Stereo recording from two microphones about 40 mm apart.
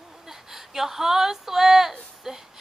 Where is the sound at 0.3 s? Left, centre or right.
Centre.